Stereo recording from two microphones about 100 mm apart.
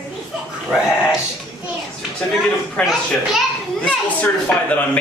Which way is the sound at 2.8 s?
10° left (ahead or behind).